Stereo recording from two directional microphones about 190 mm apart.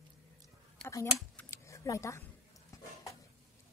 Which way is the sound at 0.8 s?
5° left (ahead or behind).